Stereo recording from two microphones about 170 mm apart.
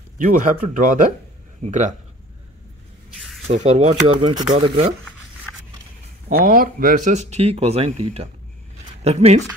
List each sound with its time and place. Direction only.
0.2 s speech: 50° right (ahead or behind)
3.4 s speech: 40° right (ahead or behind)
4.1 s speech: 25° right (ahead or behind)
6.2 s speech: 55° right (ahead or behind); by 9.4 s 40° right (ahead or behind)